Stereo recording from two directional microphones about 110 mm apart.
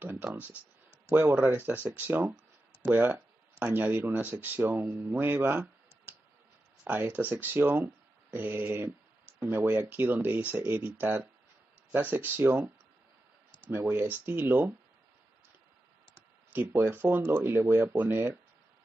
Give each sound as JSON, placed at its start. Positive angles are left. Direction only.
{"t": 0.0, "sound": "speech", "side_deg": -20}
{"t": 16.5, "sound": "speech", "side_deg": -20}